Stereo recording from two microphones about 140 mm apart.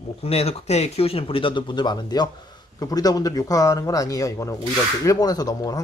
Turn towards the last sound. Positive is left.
turn(degrees=25)  # may be behind; listen again after turning